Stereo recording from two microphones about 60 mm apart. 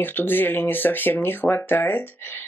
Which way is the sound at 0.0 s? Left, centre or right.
Left.